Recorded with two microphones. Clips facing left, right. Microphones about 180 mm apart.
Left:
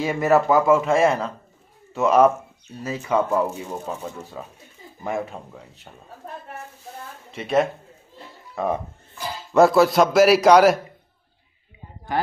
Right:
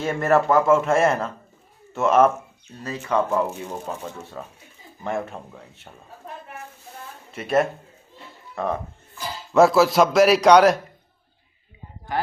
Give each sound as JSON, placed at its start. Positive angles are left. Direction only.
{"t": 0.0, "sound": "speech", "side_deg": 0}
{"t": 7.3, "sound": "speech", "side_deg": 0}
{"t": 8.5, "sound": "speech", "side_deg": 10}
{"t": 9.5, "sound": "speech", "side_deg": 0}